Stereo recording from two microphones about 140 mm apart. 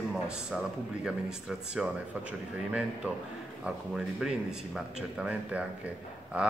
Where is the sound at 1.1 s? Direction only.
5° right (ahead or behind).